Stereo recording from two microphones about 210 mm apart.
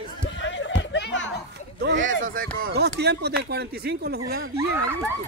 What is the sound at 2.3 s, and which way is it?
Speech, 45° right (ahead or behind).